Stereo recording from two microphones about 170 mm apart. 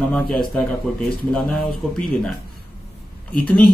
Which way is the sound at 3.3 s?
10° left (ahead or behind).